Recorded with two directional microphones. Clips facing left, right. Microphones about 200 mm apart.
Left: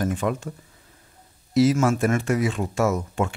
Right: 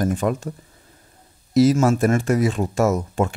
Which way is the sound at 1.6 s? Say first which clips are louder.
Right 3 dB; 40° right (ahead or behind).